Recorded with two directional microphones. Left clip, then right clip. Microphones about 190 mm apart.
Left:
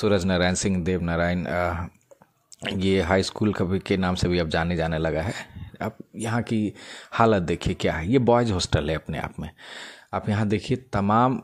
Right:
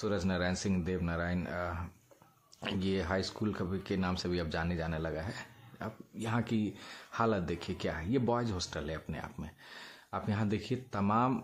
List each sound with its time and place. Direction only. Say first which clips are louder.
0.0 s speech: left 12 dB; 35° left (ahead or behind)